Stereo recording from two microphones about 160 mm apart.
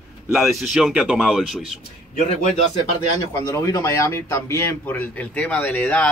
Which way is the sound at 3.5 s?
20° left (ahead or behind).